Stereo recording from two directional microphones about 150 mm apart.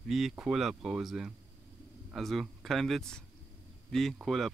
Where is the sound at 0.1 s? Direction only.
Centre (ahead or behind).